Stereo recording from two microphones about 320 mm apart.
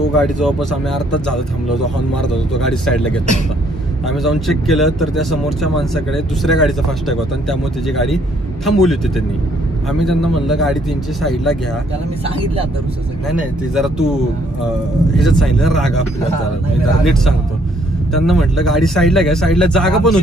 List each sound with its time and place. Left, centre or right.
0.2 s speech: centre
13.3 s speech: centre
15.1 s speech: centre
17.0 s speech: centre